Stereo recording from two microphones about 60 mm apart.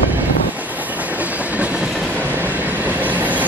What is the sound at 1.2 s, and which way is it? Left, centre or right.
Train, right.